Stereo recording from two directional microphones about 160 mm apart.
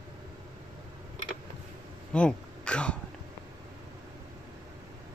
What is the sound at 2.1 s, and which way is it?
Speech, 5° left (ahead or behind).